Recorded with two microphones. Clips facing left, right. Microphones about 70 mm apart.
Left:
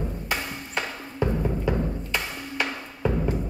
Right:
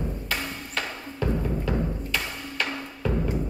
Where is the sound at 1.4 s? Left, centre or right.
Centre.